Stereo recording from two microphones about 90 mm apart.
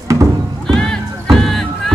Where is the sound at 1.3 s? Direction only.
5° left (ahead or behind).